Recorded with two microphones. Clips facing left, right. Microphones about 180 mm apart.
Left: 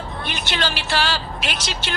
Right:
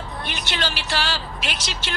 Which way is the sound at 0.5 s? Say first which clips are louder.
Left 3 dB; 60° left (ahead or behind).